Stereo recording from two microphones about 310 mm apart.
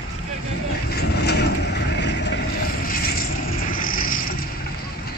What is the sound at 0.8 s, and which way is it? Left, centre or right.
Vehicle, left.